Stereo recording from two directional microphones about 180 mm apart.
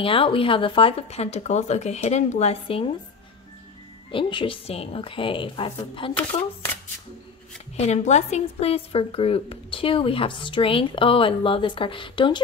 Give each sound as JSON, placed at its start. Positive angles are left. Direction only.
{"t": 0.0, "sound": "a woman's voice", "side_deg": 30}
{"t": 4.1, "sound": "a woman's voice", "side_deg": 30}
{"t": 7.7, "sound": "a woman's voice", "side_deg": 40}